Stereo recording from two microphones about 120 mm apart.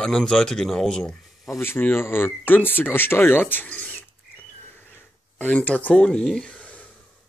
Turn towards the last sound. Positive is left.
turn(degrees=10)  # may be behind; listen again after turning